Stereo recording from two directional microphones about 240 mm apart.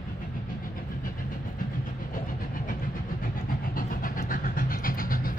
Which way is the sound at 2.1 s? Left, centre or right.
Left.